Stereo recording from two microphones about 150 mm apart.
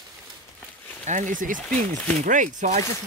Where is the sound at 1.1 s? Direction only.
55° right (ahead or behind).